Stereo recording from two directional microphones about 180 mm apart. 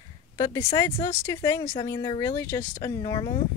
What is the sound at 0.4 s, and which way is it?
Speech, 20° left (ahead or behind).